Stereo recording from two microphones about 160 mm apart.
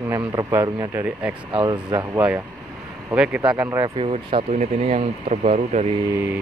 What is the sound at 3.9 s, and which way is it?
Speech, 35° right (ahead or behind).